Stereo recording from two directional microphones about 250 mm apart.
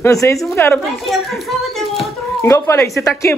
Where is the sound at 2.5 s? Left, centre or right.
Centre.